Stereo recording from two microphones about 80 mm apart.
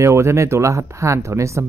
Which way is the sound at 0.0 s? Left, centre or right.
Right.